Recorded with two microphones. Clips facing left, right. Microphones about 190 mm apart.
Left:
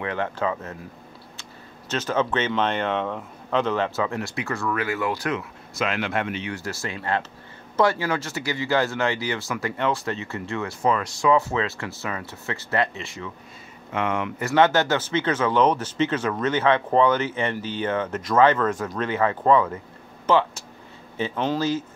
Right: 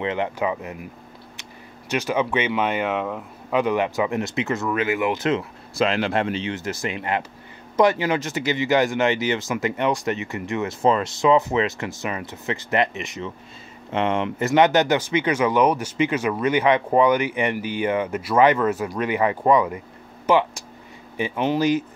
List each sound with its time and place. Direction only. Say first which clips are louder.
0.0 s speech: right 2 dB; 20° right (ahead or behind)
1.9 s speech: right 1 dB; 10° right (ahead or behind)